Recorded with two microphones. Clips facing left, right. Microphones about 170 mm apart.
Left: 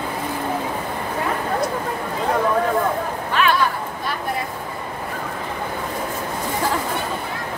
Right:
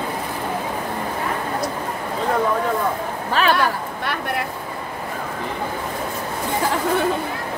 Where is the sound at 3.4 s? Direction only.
35° right (ahead or behind).